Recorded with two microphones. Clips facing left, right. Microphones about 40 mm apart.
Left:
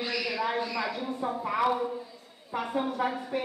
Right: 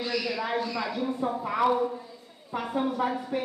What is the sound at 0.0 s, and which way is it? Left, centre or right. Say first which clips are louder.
A woman's voice: even; centre.